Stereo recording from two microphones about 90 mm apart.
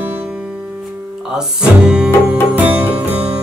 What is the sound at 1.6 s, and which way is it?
Cello, 10° right (ahead or behind).